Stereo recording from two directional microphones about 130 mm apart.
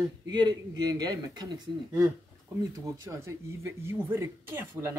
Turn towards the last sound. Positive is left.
turn(degrees=-20)  # may be behind; listen again after turning